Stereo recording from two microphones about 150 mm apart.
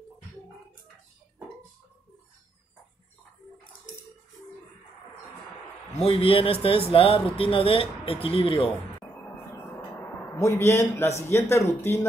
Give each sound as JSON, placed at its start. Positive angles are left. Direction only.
{"t": 6.0, "sound": "speech", "side_deg": 40}
{"t": 10.3, "sound": "a man's voice", "side_deg": 20}